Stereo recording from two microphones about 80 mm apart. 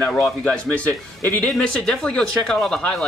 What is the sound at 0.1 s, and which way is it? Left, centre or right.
Speech, centre.